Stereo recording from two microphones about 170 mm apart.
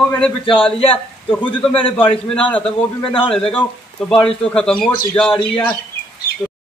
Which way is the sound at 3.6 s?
5° left (ahead or behind).